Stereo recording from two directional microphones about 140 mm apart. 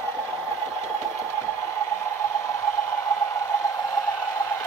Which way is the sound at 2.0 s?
20° left (ahead or behind).